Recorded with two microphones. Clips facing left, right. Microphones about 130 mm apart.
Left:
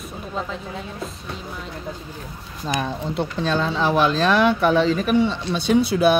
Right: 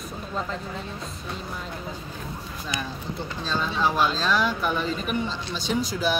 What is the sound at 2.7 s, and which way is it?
Speech, 65° left (ahead or behind).